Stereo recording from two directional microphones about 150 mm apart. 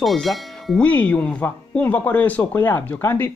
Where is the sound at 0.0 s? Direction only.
Centre (ahead or behind).